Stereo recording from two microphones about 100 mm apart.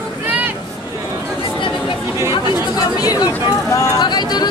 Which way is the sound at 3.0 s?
40° left (ahead or behind).